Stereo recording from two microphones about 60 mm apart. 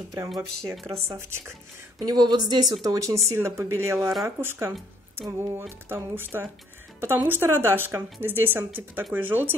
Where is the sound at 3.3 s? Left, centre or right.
Right.